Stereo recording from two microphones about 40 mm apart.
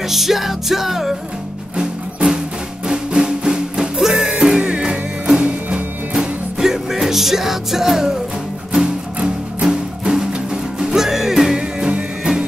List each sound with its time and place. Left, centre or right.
0.1 s music: centre
1.8 s music: right
6.6 s music: centre
9.2 s music: right
10.0 s music: centre